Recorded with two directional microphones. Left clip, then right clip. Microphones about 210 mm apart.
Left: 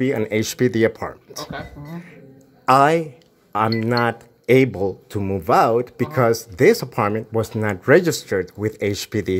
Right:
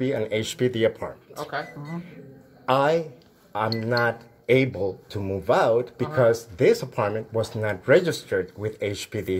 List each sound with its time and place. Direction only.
0.0 s speech: 50° left (ahead or behind)
2.6 s a man's voice: 45° left (ahead or behind)